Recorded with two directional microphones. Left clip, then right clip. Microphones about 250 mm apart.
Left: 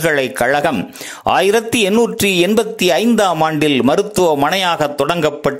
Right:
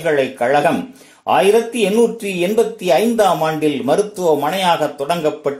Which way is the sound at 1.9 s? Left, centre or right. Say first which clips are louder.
Left 2 dB; left.